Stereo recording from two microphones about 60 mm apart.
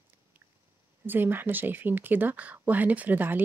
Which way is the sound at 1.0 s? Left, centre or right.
Right.